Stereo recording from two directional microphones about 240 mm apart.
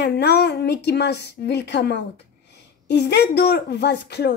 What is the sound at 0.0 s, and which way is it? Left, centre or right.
A woman's voice, left.